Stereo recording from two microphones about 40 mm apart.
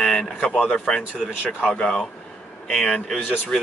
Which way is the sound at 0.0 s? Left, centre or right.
Centre.